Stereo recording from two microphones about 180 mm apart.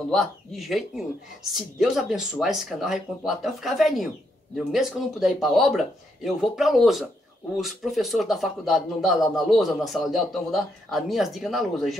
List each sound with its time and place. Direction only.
0.1 s speech: centre (ahead or behind)